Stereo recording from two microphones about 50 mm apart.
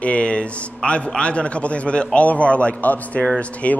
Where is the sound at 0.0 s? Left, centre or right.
Left.